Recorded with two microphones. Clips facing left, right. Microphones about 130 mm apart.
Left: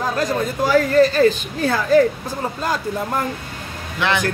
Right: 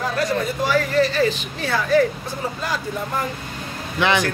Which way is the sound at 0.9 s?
45° left (ahead or behind).